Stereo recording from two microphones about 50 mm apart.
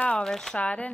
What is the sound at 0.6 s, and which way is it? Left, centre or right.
Speech, left.